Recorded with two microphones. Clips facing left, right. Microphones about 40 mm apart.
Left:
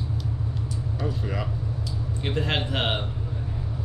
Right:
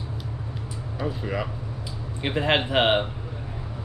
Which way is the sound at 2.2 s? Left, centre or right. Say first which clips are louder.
Right 5 dB; right.